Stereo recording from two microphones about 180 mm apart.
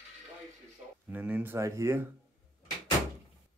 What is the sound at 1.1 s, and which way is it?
Speech, 10° right (ahead or behind).